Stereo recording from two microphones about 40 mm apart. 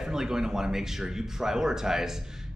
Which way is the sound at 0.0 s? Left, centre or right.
Centre.